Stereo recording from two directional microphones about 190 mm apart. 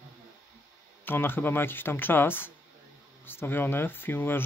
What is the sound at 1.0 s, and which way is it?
Speech, 10° left (ahead or behind).